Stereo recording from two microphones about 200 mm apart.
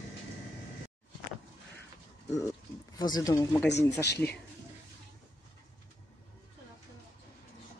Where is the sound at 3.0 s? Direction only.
20° left (ahead or behind).